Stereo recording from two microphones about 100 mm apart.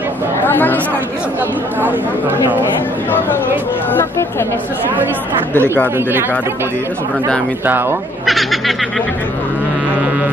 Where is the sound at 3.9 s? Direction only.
25° left (ahead or behind).